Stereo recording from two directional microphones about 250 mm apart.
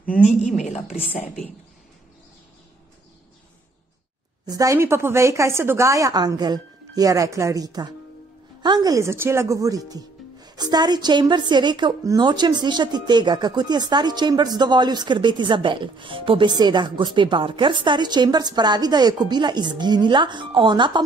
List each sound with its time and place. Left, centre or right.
0.6 s speech: left
4.5 s speech: centre